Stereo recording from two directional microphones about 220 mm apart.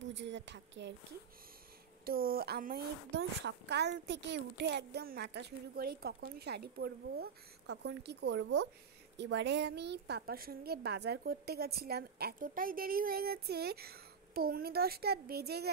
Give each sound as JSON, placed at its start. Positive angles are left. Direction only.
{"t": 0.0, "sound": "a woman's voice", "side_deg": -55}
{"t": 2.0, "sound": "a woman's voice", "side_deg": -40}